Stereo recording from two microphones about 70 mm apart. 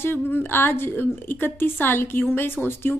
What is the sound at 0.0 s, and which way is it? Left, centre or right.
A woman's voice, left.